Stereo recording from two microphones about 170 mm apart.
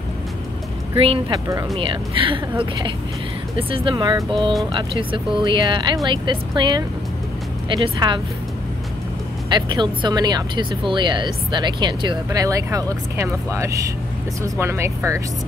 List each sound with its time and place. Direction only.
1.0 s speech: 30° right (ahead or behind)
9.5 s speech: 25° right (ahead or behind)